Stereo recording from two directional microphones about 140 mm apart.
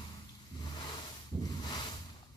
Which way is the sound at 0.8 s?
30° left (ahead or behind).